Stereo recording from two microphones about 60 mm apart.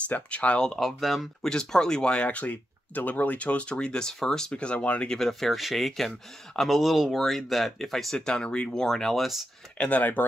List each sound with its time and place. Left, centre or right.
0.0 s speech: left; by 1.5 s centre
1.5 s speech: centre
8.4 s speech: centre
9.8 s speech: left